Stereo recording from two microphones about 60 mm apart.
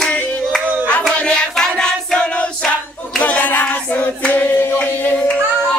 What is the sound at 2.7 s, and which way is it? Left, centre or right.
Hands, centre.